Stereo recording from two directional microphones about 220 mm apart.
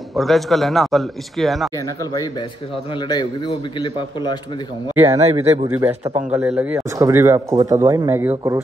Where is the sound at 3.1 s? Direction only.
20° left (ahead or behind).